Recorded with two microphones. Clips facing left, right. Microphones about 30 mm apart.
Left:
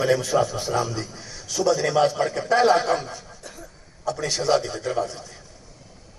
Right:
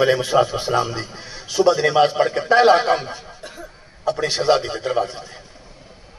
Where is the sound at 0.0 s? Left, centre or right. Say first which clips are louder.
Right 4 dB; right.